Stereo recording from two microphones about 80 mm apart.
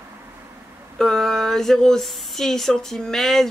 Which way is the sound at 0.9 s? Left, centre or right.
Centre.